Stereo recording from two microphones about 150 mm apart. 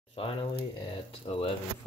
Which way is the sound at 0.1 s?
40° left (ahead or behind).